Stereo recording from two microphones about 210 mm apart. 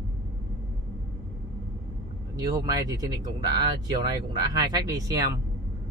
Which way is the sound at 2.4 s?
15° right (ahead or behind).